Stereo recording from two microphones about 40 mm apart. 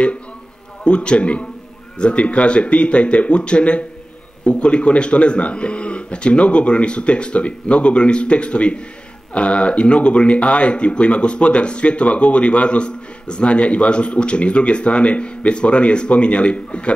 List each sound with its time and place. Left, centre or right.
0.8 s speech: left